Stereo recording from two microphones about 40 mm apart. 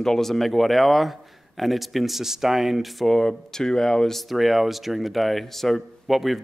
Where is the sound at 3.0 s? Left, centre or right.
Centre.